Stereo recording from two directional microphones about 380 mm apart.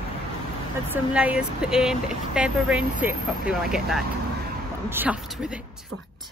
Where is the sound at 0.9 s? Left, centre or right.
Centre.